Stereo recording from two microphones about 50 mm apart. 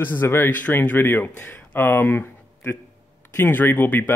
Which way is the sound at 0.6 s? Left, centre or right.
Left.